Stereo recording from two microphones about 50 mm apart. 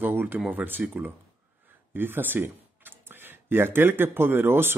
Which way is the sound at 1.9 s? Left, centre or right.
Right.